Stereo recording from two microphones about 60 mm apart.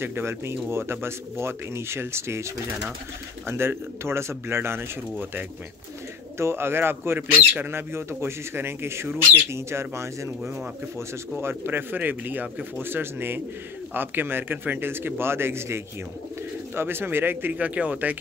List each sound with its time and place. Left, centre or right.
0.0 s speech: right
3.4 s speech: right
6.3 s speech: right
9.7 s speech: right
11.4 s a man's voice: right